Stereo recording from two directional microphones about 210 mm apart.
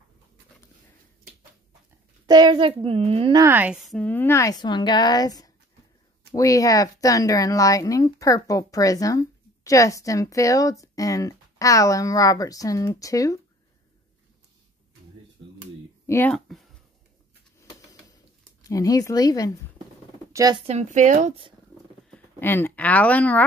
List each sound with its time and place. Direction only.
2.2 s a child's voice: 20° right (ahead or behind)
3.4 s speech: 10° right (ahead or behind); by 13.4 s 15° left (ahead or behind)
16.1 s speech: 10° left (ahead or behind)
18.7 s speech: 15° left (ahead or behind)
20.3 s speech: 20° right (ahead or behind)
20.6 s speech: 35° right (ahead or behind)
22.1 s speech: 10° left (ahead or behind)